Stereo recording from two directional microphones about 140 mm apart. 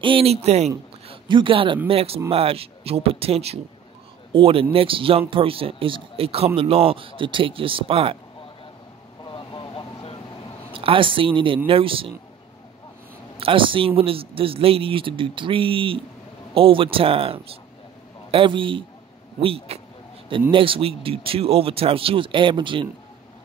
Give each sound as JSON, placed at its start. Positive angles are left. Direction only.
{"t": 0.0, "sound": "speech", "side_deg": -40}
{"t": 1.0, "sound": "speech", "side_deg": -40}
{"t": 9.2, "sound": "vehicle", "side_deg": 30}
{"t": 10.7, "sound": "speech", "side_deg": -40}
{"t": 13.4, "sound": "speech", "side_deg": -40}